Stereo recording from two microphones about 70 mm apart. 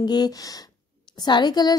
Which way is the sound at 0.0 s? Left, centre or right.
Left.